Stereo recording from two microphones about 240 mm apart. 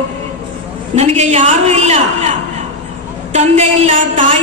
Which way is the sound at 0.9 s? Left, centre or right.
Right.